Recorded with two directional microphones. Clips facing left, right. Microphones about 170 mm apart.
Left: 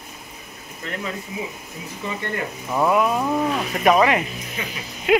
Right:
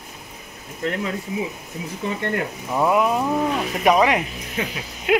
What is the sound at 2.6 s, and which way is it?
Speech, 5° right (ahead or behind).